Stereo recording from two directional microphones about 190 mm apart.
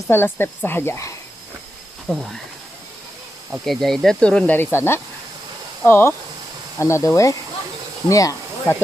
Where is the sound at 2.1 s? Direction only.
Centre (ahead or behind).